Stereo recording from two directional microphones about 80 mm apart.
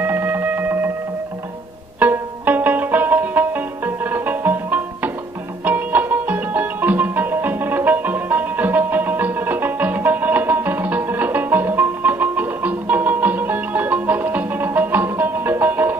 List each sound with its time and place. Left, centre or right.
0.0 s music: right
2.0 s music: right